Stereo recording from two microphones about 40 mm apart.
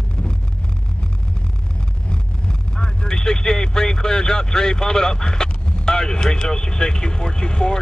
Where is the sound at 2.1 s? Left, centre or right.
Left.